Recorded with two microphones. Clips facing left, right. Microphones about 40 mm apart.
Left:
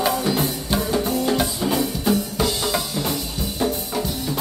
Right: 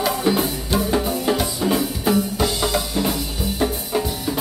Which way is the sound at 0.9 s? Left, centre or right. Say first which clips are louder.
Left 1 dB; centre.